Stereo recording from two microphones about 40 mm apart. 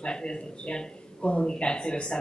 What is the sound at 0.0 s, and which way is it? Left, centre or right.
A man's voice, left.